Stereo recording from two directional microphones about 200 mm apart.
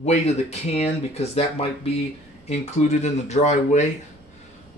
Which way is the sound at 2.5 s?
35° left (ahead or behind).